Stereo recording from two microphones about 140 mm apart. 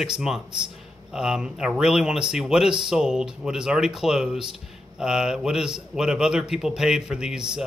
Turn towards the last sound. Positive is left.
turn(degrees=-5)  # may be behind; listen again after turning